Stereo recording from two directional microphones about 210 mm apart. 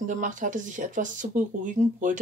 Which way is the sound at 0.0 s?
35° right (ahead or behind).